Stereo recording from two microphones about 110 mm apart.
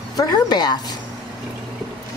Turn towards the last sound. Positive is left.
turn(degrees=40)  # may be behind; listen again after turning